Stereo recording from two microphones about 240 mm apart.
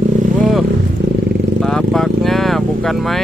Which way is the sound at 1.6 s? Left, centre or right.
Centre.